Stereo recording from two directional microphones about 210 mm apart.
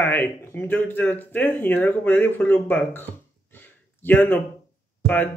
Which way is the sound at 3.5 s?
10° left (ahead or behind).